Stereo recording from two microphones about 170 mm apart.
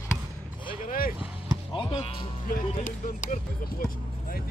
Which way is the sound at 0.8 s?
55° left (ahead or behind).